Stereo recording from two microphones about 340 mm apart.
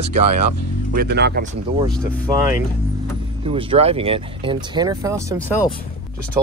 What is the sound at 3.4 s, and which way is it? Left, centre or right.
Speech, centre.